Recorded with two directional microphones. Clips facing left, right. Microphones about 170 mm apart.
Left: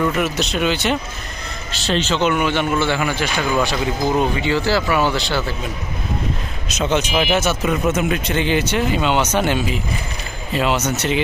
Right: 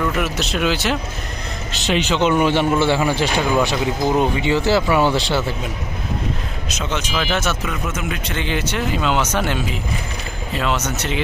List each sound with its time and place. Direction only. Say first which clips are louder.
0.0 s speech: left 2 dB; centre (ahead or behind)
1.7 s speech: even; 15° right (ahead or behind)
2.3 s speech: right 2 dB; 30° right (ahead or behind)
3.5 s speech: right 1 dB; 15° right (ahead or behind)
6.8 s speech: left 6 dB; 20° left (ahead or behind)
8.4 s speech: left 3 dB; 5° left (ahead or behind)
10.6 s speech: left 3 dB; 5° left (ahead or behind)